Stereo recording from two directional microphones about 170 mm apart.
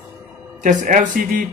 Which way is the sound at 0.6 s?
50° right (ahead or behind).